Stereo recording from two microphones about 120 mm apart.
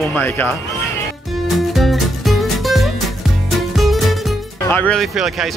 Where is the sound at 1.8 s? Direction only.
Centre (ahead or behind).